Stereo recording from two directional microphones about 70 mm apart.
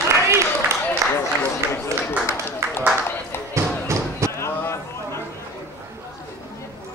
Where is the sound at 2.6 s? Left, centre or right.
Right.